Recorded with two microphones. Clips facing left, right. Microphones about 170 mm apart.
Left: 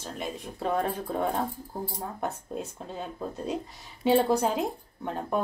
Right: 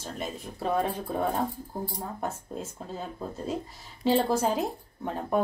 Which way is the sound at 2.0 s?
Centre (ahead or behind).